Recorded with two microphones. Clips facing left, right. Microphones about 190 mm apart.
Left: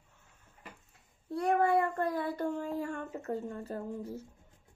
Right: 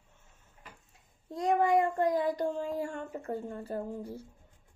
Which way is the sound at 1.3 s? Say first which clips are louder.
Right 1 dB; 15° right (ahead or behind).